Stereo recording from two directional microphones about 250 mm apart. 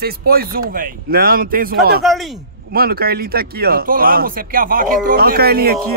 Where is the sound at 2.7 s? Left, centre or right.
Right.